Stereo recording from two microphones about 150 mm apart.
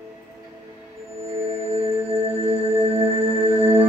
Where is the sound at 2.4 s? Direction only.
40° right (ahead or behind).